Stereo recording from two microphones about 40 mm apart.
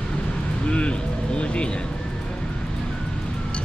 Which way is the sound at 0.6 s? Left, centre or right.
Left.